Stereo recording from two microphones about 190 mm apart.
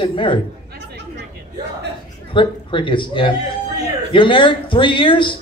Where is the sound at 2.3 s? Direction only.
25° left (ahead or behind).